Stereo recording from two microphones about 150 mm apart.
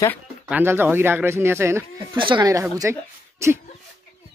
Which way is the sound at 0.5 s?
15° right (ahead or behind).